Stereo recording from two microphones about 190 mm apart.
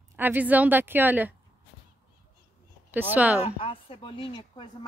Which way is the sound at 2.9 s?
10° right (ahead or behind).